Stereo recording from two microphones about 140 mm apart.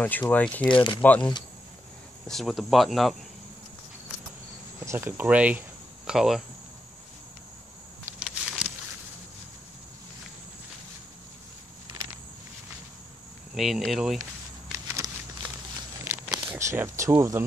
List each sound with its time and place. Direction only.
0.0 s speech: 10° left (ahead or behind)
0.7 s speech: 35° left (ahead or behind)
1.0 s speech: 10° left (ahead or behind)
4.8 s speech: 15° right (ahead or behind)
8.2 s a sound: 5° right (ahead or behind)
13.6 s speech: centre (ahead or behind)
14.9 s a sound: 25° right (ahead or behind)